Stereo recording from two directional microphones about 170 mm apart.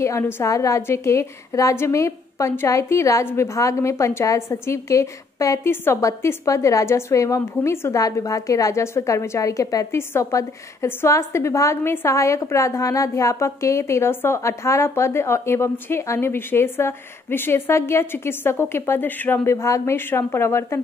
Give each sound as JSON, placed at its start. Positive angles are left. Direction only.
{"t": 0.0, "sound": "a woman's voice", "side_deg": 15}